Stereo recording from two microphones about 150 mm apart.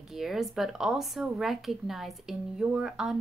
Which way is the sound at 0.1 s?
Centre (ahead or behind).